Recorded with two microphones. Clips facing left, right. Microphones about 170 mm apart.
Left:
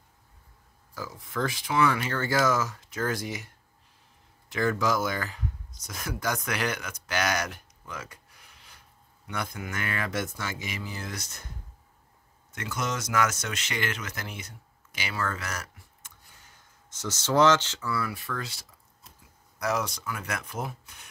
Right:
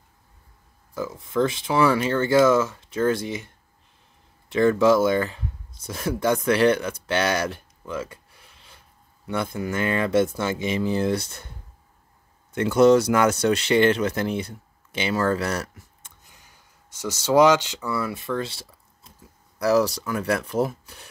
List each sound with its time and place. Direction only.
0.9 s speech: 25° right (ahead or behind)
12.7 s speech: 30° right (ahead or behind)
16.0 s speech: 15° right (ahead or behind); by 21.1 s 35° right (ahead or behind)